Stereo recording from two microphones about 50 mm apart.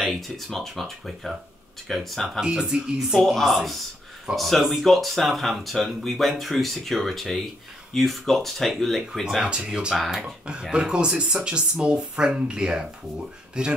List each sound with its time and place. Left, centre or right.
0.0 s speech: centre
2.4 s speech: centre
3.1 s speech: centre
9.4 s speech: centre
9.9 s speech: centre
10.2 s speech: centre